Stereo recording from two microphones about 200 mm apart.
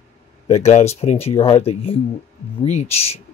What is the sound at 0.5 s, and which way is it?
Speech, 35° left (ahead or behind).